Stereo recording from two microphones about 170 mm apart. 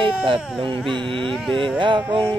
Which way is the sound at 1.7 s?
30° right (ahead or behind).